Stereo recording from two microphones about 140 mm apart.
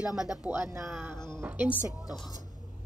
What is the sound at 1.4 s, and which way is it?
Speech, 15° right (ahead or behind).